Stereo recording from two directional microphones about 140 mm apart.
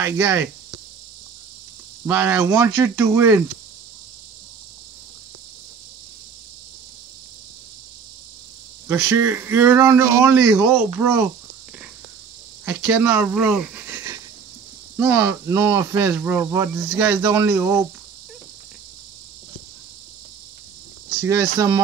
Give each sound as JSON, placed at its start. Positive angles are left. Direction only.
{"t": 0.0, "sound": "speech", "side_deg": -20}
{"t": 2.0, "sound": "speech", "side_deg": -15}
{"t": 8.8, "sound": "speech", "side_deg": -20}
{"t": 12.6, "sound": "speech", "side_deg": -20}
{"t": 13.3, "sound": "a sound", "side_deg": -5}
{"t": 15.0, "sound": "speech", "side_deg": -15}
{"t": 21.1, "sound": "speech", "side_deg": -25}